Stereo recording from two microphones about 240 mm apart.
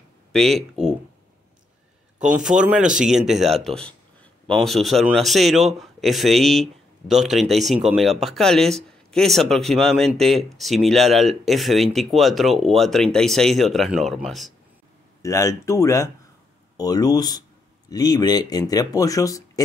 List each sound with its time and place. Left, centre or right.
0.3 s speech: centre
2.2 s a man's voice: centre
15.2 s speech: centre